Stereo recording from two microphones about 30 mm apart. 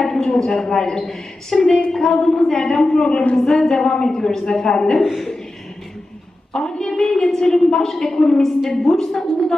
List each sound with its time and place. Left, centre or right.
0.0 s a woman's voice: centre
6.5 s a woman's voice: centre